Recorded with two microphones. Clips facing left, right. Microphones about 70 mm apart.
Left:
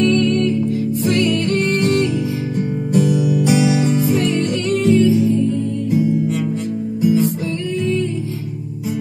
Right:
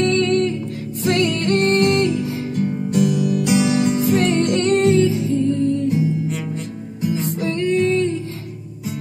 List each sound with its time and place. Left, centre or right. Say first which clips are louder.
0.0 s music: left 2 dB; right
2.5 s music: left 2 dB; centre
4.2 s music: right 1 dB; right
7.2 s music: right 1 dB; right